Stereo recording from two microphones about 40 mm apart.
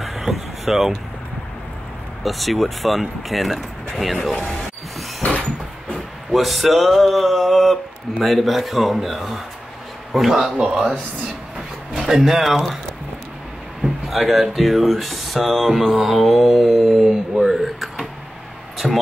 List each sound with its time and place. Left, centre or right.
0.0 s vehicle: centre
2.2 s speech: centre
5.2 s a sound: left
6.3 s speech: centre
13.8 s speech: centre